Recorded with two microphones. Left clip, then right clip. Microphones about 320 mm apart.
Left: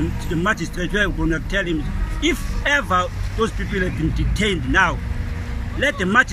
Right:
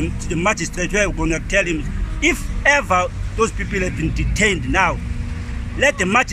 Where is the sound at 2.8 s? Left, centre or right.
Centre.